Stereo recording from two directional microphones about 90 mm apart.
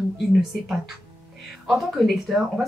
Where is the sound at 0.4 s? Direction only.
5° right (ahead or behind).